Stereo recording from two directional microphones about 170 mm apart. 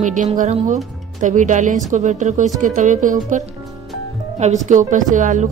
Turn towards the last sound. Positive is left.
turn(degrees=-50)  # may be behind; listen again after turning